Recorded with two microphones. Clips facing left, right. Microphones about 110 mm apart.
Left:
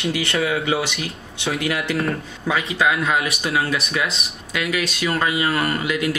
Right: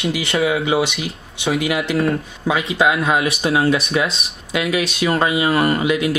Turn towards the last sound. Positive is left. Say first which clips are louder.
# right 5 dB
turn(degrees=-20)  # may be behind; listen again after turning